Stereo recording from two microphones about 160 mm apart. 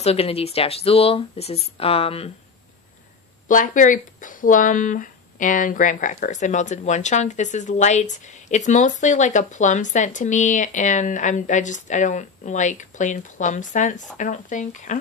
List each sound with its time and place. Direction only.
0.0 s speech: 40° left (ahead or behind)
3.4 s speech: 55° left (ahead or behind)